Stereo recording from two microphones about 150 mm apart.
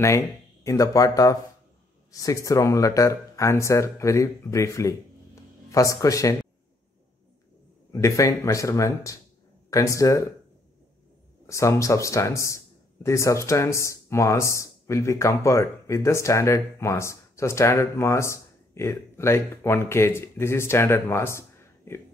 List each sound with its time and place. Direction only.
0.7 s a man's voice: 20° left (ahead or behind)
7.9 s a man's voice: 20° left (ahead or behind)
11.4 s a man's voice: 20° left (ahead or behind)